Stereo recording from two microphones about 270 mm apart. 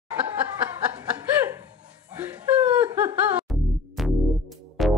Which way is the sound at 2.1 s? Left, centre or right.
Centre.